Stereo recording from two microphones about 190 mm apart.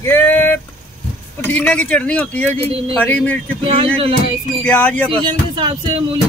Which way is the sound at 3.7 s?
30° right (ahead or behind).